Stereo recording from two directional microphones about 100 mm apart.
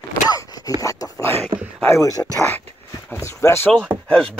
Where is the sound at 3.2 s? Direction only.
30° left (ahead or behind).